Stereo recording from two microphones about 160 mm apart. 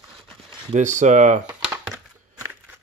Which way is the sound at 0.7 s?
50° right (ahead or behind).